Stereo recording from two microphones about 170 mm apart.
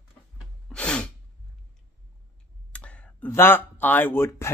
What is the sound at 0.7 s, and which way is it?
Sneeze, 5° left (ahead or behind).